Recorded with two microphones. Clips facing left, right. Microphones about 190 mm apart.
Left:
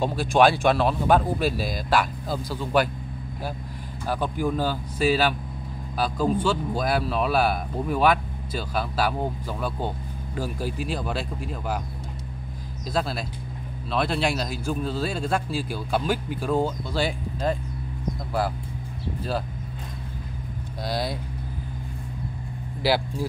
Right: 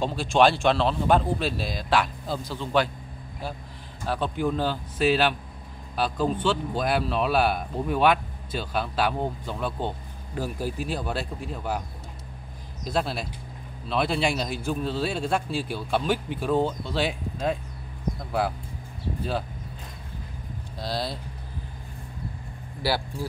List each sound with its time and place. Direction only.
0.0 s a man's voice: 10° left (ahead or behind)
4.0 s a man's voice: 10° left (ahead or behind)
12.9 s a man's voice: centre (ahead or behind)
20.8 s a man's voice: 15° left (ahead or behind)